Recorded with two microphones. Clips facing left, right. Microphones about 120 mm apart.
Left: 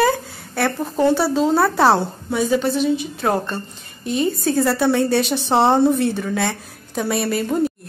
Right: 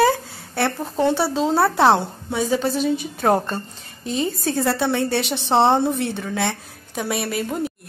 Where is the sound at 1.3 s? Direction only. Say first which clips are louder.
Left 2 dB; 25° right (ahead or behind).